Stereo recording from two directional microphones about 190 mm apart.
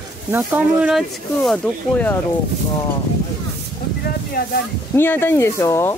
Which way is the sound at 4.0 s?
55° left (ahead or behind).